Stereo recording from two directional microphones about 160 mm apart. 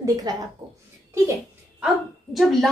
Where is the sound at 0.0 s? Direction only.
25° right (ahead or behind).